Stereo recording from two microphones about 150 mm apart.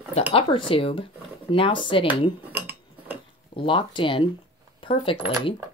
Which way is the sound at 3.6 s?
35° left (ahead or behind).